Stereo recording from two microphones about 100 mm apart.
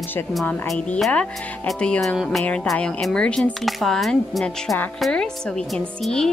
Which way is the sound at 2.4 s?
10° left (ahead or behind).